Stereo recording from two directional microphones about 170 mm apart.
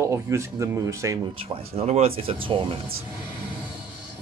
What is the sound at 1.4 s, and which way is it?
Speech, 35° right (ahead or behind).